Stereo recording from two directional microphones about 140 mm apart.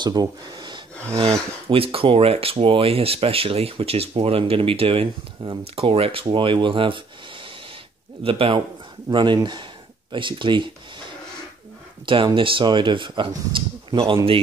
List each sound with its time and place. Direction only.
0.0 s speech: 30° right (ahead or behind)
1.7 s speech: 40° right (ahead or behind)
8.2 s speech: 40° right (ahead or behind)
12.1 s speech: 35° right (ahead or behind)